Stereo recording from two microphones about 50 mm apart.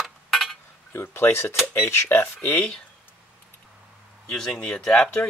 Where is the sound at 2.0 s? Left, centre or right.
Left.